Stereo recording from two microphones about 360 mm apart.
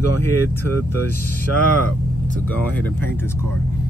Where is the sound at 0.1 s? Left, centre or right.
Right.